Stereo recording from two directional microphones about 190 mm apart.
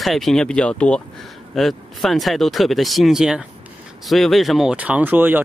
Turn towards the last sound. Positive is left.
turn(degrees=-10)  # may be behind; listen again after turning